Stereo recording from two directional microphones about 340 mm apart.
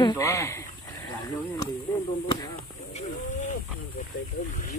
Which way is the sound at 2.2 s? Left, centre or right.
Centre.